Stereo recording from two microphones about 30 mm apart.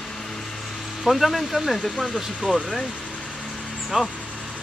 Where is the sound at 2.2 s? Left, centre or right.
Right.